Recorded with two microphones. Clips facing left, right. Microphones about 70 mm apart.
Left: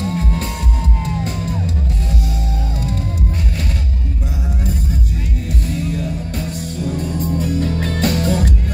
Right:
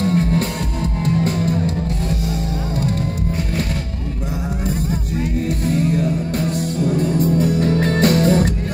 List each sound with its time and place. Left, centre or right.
0.0 s music: right
5.8 s music: right
7.4 s music: right